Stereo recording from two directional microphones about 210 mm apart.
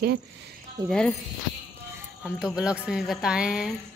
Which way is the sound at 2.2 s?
5° right (ahead or behind).